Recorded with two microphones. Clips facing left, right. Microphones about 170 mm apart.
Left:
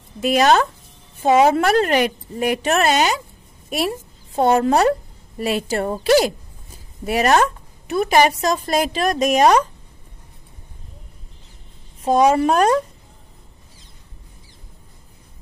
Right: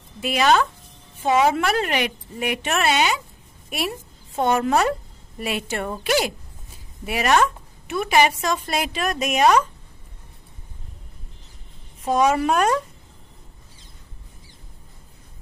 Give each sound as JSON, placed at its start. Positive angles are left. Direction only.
{"t": 0.2, "sound": "a woman's voice", "side_deg": 40}
{"t": 4.4, "sound": "a woman's voice", "side_deg": 35}
{"t": 12.0, "sound": "a woman's voice", "side_deg": 30}